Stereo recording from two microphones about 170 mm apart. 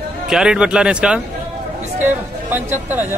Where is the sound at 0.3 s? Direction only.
5° right (ahead or behind).